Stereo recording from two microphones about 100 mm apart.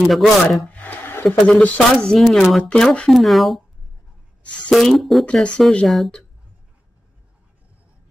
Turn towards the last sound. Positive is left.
turn(degrees=0)  # may be behind; listen again after turning